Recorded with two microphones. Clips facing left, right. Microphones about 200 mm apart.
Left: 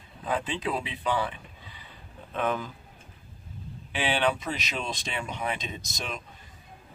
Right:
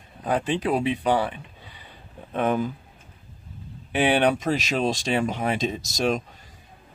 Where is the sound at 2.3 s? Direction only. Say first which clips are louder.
Right 6 dB; 45° right (ahead or behind).